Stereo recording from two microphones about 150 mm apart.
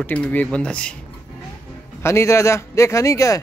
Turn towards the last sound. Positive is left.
turn(degrees=20)  # may be behind; listen again after turning